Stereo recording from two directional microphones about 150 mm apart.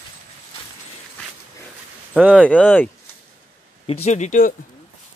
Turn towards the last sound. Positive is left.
turn(degrees=55)  # may be behind; listen again after turning